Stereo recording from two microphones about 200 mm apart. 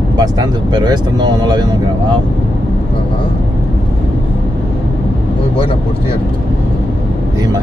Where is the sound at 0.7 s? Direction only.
20° right (ahead or behind).